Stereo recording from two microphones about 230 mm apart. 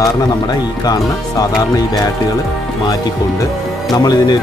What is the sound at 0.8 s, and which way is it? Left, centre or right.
Speech, centre.